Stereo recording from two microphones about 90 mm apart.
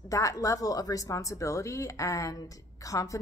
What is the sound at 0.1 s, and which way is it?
A woman's voice, 35° left (ahead or behind).